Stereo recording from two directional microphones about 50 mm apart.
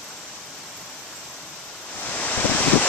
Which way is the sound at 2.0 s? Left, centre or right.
Left.